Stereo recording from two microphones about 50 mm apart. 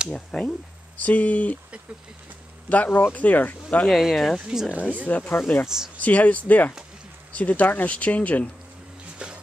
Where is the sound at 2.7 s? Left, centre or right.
Left.